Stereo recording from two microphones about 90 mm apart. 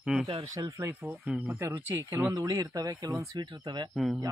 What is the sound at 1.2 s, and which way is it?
Speech, 10° right (ahead or behind).